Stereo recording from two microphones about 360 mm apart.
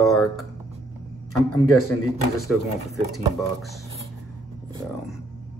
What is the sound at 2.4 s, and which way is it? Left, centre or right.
Speech, centre.